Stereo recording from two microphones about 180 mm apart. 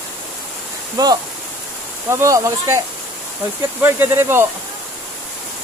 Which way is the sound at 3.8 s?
15° right (ahead or behind).